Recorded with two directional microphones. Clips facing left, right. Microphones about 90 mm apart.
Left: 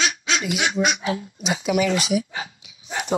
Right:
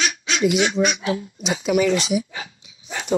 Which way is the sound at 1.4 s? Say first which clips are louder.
Right 2 dB; 5° left (ahead or behind).